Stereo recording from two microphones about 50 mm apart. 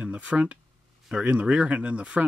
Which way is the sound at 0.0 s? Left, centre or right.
Right.